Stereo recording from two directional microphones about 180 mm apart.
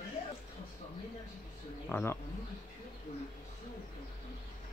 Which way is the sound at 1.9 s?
10° left (ahead or behind).